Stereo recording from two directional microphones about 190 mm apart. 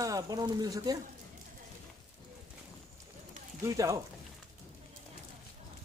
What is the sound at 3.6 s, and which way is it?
Speech, 15° right (ahead or behind).